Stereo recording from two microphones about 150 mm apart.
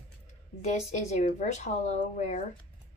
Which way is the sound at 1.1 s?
55° left (ahead or behind).